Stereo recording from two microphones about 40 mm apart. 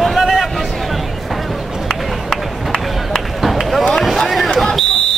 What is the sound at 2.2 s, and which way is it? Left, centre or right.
Run, centre.